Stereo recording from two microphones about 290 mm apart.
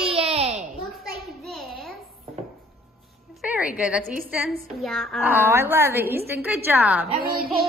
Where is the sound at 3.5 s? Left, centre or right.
Centre.